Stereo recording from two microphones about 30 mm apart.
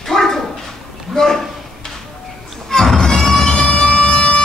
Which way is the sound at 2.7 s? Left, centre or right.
Centre.